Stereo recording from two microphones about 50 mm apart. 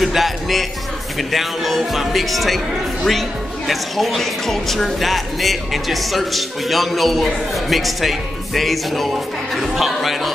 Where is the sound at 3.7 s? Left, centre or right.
Centre.